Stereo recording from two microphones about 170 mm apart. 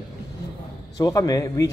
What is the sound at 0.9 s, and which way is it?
Speech, 20° left (ahead or behind).